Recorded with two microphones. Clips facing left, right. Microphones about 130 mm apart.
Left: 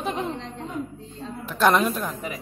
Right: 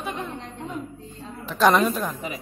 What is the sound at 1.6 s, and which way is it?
Speech, centre (ahead or behind).